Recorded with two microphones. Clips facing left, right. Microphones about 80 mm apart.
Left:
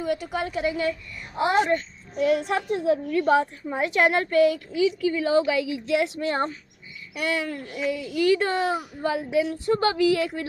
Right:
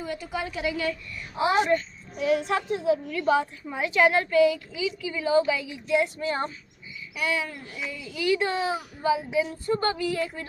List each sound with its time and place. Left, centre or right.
0.0 s speech: left
0.7 s a woman's voice: left
1.4 s a child's voice: left